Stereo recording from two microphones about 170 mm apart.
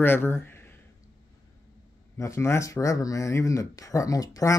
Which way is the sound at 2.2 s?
15° left (ahead or behind).